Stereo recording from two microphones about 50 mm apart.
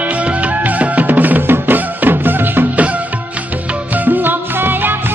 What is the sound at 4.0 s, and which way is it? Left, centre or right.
Music, right.